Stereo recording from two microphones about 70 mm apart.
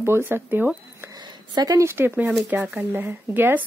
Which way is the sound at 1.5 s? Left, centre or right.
Right.